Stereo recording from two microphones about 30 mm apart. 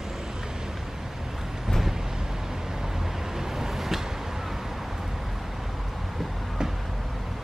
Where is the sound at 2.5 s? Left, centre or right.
Centre.